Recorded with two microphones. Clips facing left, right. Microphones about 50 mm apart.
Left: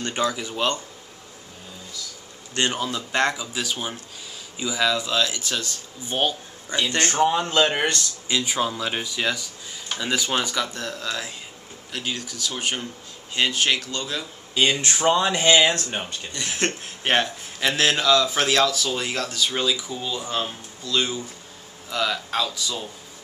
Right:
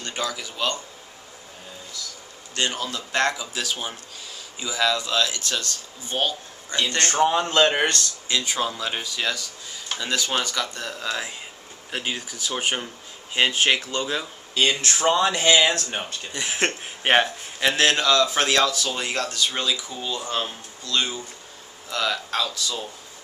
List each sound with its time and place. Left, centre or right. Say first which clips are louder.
0.0 s speech: left 4 dB; left
2.5 s speech: left 2 dB; left
2.8 s a man's voice: left 1 dB; centre
10.9 s speech: right 1 dB; centre
14.5 s a man's voice: left 1 dB; centre
16.3 s a man's voice: right 2 dB; centre